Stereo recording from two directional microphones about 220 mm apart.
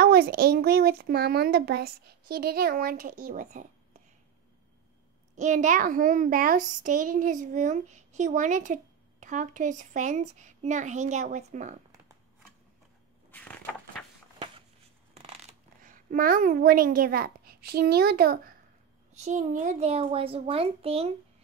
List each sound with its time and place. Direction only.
0.0 s a woman's voice: 45° right (ahead or behind)
5.3 s a child's voice: 35° right (ahead or behind)
13.3 s a sound: 10° left (ahead or behind)
15.1 s a child's voice: 30° right (ahead or behind)
19.1 s a child's voice: 30° right (ahead or behind)